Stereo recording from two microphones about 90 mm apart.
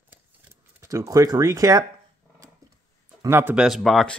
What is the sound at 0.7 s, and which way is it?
Speech, 35° right (ahead or behind).